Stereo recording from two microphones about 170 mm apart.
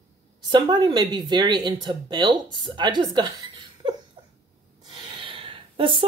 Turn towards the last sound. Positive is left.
turn(degrees=-30)  # may be behind; listen again after turning